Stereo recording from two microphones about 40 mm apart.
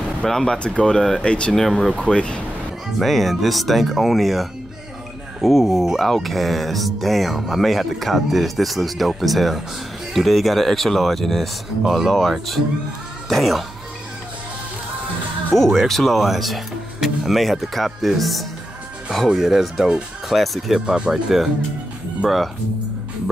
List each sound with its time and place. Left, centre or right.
0.3 s speech: centre
1.2 s speech: left
1.5 s speech: centre
2.0 s speech: left
3.0 s speech: centre
5.9 s speech: centre
15.5 s speech: centre
19.2 s speech: centre
20.8 s speech: right
21.1 s speech: centre